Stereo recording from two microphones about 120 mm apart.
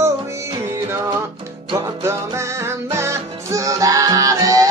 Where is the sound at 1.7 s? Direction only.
25° right (ahead or behind).